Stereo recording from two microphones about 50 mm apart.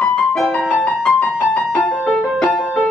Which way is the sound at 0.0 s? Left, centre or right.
Centre.